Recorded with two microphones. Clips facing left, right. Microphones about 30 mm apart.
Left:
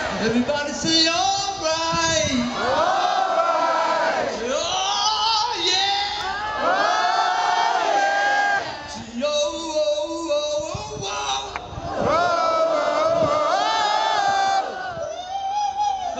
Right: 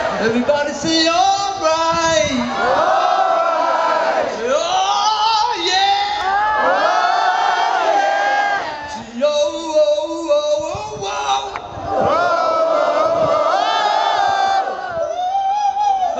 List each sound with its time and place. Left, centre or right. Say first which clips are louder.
0.0 s speech: right 5 dB; centre
2.6 s crowd: right 6 dB; centre
4.6 s a sound: right 7 dB; centre
6.3 s crowd: right 7 dB; right
8.3 s a sound: right 3 dB; right
9.2 s music: right 6 dB; centre
11.9 s crowd: right 5 dB; centre
15.5 s music: right 2 dB; centre